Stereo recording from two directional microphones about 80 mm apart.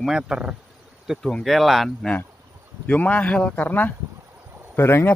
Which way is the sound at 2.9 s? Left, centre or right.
Centre.